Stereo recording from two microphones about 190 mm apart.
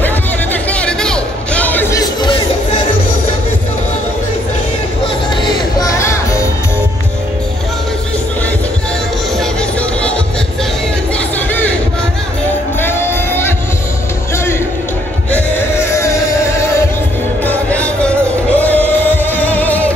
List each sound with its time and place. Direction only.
0.7 s music: 5° left (ahead or behind); by 2.8 s 25° left (ahead or behind)
5.4 s music: 20° left (ahead or behind)
9.4 s music: 5° left (ahead or behind)
12.8 s music: 10° left (ahead or behind)
17.5 s music: 5° left (ahead or behind)